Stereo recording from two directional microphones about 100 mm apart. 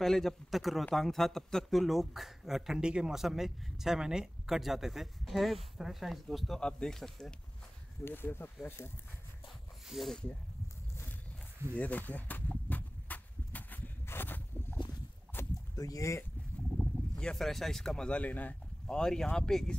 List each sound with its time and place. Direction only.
0.0 s a man's voice: 5° left (ahead or behind)
8.0 s speech: 20° left (ahead or behind)
9.8 s speech: centre (ahead or behind)
11.8 s a sound: 15° left (ahead or behind)
15.3 s rowboat: 20° left (ahead or behind)
15.7 s speech: 35° left (ahead or behind)
16.8 s a sound: 15° left (ahead or behind)
17.2 s speech: 5° left (ahead or behind)